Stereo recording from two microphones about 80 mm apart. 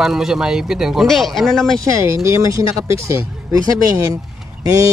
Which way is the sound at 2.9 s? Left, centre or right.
Right.